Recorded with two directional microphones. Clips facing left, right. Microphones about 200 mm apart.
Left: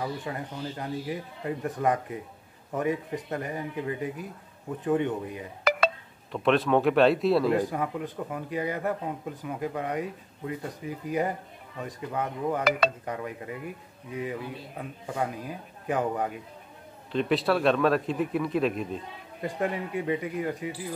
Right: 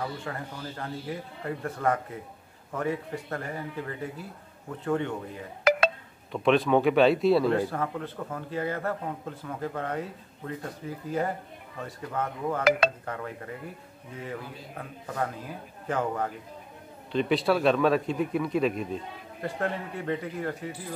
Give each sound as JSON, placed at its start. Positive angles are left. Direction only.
{"t": 0.0, "sound": "a man's voice", "side_deg": 15}
{"t": 6.3, "sound": "speech", "side_deg": 0}
{"t": 7.5, "sound": "a man's voice", "side_deg": 15}
{"t": 17.1, "sound": "speech", "side_deg": 0}
{"t": 19.4, "sound": "a man's voice", "side_deg": 15}